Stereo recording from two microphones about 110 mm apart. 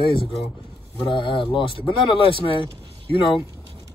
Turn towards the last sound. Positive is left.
turn(degrees=50)  # may be behind; listen again after turning